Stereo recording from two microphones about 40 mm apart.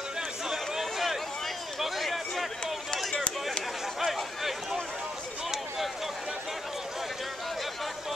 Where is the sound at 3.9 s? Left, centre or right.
Centre.